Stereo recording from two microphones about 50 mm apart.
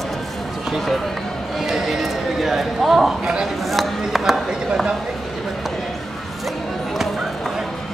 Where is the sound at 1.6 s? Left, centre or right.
Centre.